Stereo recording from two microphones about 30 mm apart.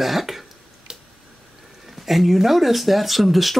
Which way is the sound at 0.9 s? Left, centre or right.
Right.